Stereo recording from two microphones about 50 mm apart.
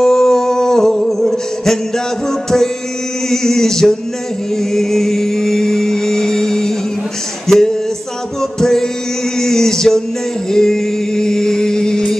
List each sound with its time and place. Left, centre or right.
0.0 s music: centre
3.3 s a sound: centre
4.6 s music: centre
7.4 s a sound: centre
8.4 s music: centre
9.4 s male singing: centre
10.5 s music: centre